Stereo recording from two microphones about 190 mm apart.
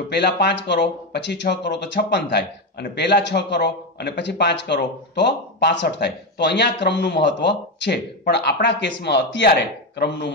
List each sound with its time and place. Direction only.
0.1 s a man's voice: 65° left (ahead or behind)